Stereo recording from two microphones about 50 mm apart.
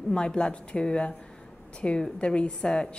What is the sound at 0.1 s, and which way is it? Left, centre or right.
A woman's voice, centre.